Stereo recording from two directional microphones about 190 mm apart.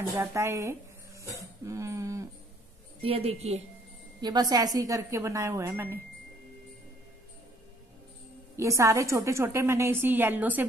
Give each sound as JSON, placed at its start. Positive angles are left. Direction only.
{"t": 0.2, "sound": "a woman's voice", "side_deg": -15}
{"t": 1.6, "sound": "a sound", "side_deg": -15}
{"t": 3.0, "sound": "a woman's voice", "side_deg": -30}
{"t": 4.2, "sound": "a woman's voice", "side_deg": -20}
{"t": 8.5, "sound": "a woman's voice", "side_deg": -15}